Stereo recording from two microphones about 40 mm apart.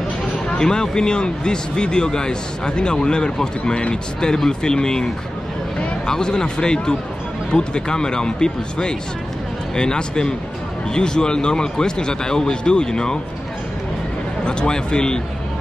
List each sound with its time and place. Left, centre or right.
0.5 s speech: centre
14.4 s speech: left